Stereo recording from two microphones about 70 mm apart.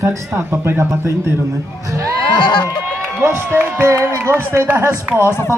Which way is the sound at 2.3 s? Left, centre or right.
Left.